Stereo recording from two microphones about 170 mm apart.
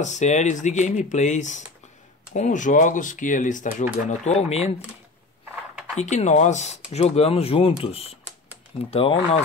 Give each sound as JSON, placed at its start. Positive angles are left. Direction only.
{"t": 0.0, "sound": "speech", "side_deg": 45}
{"t": 5.9, "sound": "speech", "side_deg": 45}